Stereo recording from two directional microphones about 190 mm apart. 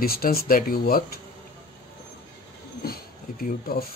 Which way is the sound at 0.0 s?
50° left (ahead or behind).